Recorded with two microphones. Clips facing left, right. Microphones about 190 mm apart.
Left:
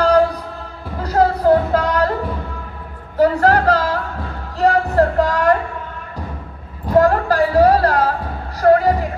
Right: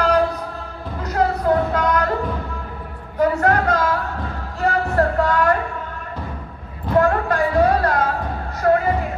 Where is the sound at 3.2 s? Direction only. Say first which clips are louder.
Left 3 dB; 35° left (ahead or behind).